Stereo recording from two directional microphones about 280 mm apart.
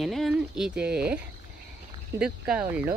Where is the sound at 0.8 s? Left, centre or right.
Right.